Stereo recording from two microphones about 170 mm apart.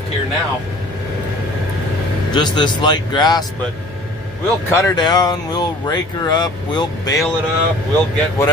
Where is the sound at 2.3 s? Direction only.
25° left (ahead or behind).